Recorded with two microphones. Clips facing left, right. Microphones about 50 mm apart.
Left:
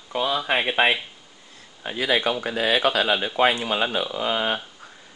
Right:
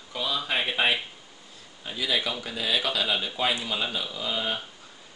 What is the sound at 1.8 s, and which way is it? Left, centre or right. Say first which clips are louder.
Speech: left 6 dB; left.